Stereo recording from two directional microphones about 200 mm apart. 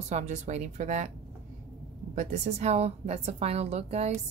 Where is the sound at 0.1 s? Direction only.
35° right (ahead or behind).